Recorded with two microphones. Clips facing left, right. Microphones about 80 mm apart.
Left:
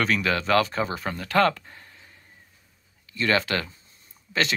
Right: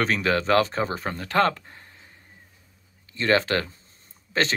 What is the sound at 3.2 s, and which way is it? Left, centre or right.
Speech, right.